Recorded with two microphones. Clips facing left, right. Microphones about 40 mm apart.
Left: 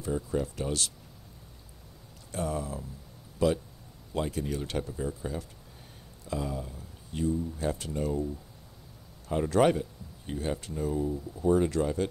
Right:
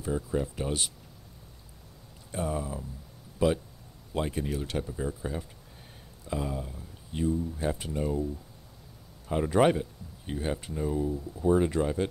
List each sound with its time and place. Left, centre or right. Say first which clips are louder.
0.0 s speech: even; centre
2.3 s speech: right 1 dB; centre
4.5 s speech: even; centre
9.3 s speech: right 1 dB; centre
11.5 s speech: right 1 dB; centre